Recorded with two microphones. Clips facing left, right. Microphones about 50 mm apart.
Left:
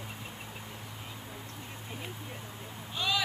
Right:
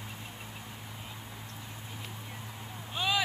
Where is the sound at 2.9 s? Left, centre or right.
Centre.